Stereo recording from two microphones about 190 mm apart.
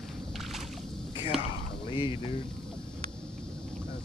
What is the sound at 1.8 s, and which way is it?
Speech, 25° left (ahead or behind).